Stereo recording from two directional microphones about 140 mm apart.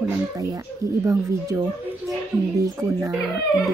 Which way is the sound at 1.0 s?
25° right (ahead or behind).